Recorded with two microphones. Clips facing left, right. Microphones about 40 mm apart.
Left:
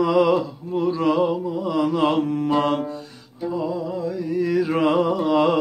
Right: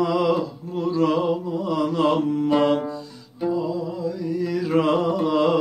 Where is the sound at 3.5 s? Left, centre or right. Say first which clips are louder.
Left 1 dB; left.